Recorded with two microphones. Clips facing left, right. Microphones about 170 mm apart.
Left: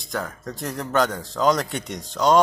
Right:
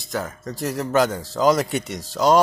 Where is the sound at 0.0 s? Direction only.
Centre (ahead or behind).